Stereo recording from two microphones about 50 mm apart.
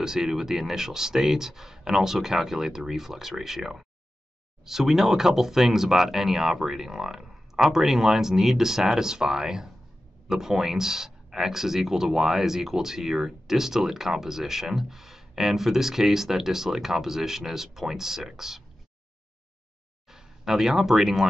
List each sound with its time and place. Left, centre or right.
0.0 s speech: centre
20.1 s speech: centre